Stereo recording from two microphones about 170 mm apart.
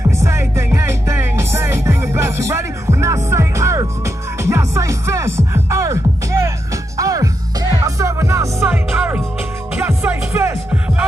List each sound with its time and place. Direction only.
0.1 s music: 15° right (ahead or behind)